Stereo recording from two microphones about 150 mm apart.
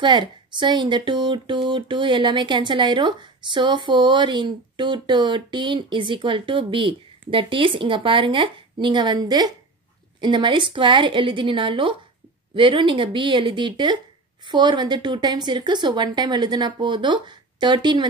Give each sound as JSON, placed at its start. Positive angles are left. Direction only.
{"t": 0.0, "sound": "a woman's voice", "side_deg": -30}